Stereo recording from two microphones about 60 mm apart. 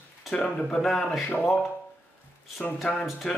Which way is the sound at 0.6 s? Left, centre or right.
Centre.